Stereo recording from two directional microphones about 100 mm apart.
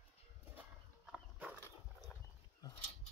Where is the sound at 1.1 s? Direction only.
10° right (ahead or behind).